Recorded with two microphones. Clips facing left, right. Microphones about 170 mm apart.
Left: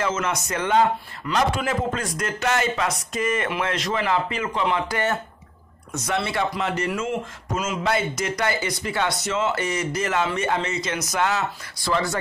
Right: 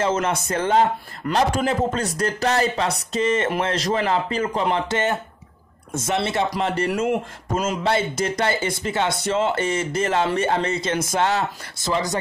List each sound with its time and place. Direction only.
0.0 s speech: 30° right (ahead or behind)
4.8 s speech: 20° right (ahead or behind)
7.1 s speech: 55° right (ahead or behind)
7.7 s speech: 30° right (ahead or behind)
11.9 s speech: 20° right (ahead or behind)